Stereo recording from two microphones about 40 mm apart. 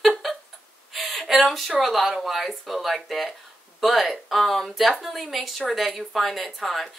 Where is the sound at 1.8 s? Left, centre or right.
Centre.